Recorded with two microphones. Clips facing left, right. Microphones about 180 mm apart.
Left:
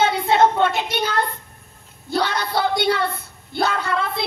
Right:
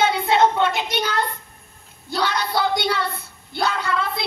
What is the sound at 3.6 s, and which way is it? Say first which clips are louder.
Speech: even; 55° left (ahead or behind).